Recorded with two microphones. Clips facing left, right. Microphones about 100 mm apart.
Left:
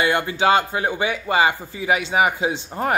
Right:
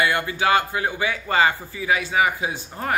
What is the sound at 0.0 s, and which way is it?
Speech, 25° left (ahead or behind).